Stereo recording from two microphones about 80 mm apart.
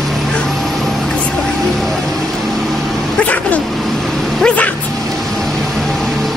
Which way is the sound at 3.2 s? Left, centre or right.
Centre.